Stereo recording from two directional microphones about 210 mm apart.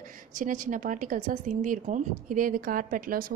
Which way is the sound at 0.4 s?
40° right (ahead or behind).